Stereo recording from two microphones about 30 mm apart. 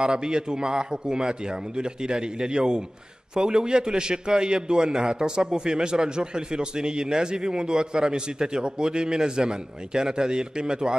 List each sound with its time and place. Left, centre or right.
0.0 s a man's voice: right